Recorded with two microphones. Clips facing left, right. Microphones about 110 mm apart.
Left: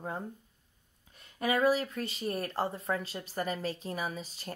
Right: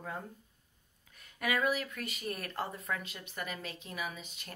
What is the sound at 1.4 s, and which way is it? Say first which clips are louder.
Speech: left 5 dB; 30° left (ahead or behind).